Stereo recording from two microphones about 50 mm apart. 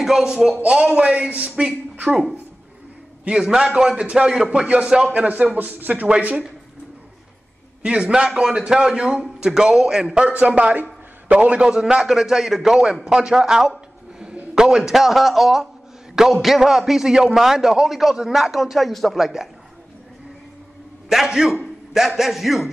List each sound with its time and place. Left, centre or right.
0.0 s a man's voice: centre
3.3 s a man's voice: centre
5.1 s a man's voice: right
7.8 s a man's voice: centre
21.3 s a man's voice: centre